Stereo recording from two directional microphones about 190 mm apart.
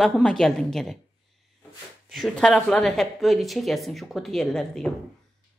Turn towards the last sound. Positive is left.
turn(degrees=0)  # may be behind; listen again after turning